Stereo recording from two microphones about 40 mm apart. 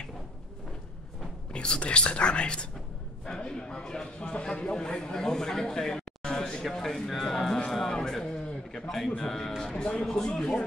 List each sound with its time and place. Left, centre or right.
1.5 s a man's voice: left
6.6 s speech: centre
7.7 s music: centre
8.7 s speech: centre